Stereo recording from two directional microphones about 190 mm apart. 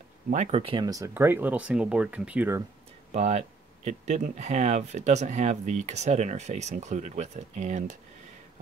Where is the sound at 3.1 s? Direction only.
35° right (ahead or behind).